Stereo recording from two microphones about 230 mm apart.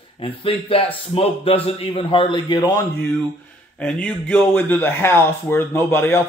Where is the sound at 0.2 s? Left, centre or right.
Left.